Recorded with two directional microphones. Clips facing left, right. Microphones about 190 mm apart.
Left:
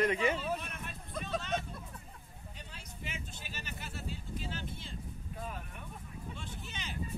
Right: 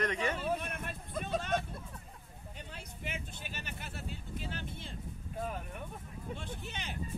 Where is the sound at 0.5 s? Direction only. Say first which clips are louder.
Right 3 dB; 55° right (ahead or behind).